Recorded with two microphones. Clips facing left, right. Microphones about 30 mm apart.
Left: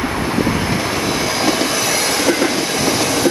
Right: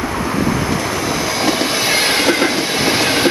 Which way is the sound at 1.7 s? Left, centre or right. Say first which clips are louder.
Right 2 dB; right.